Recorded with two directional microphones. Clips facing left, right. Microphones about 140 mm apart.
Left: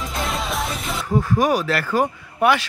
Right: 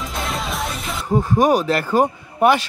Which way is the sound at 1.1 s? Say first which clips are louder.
Right 2 dB; 20° right (ahead or behind).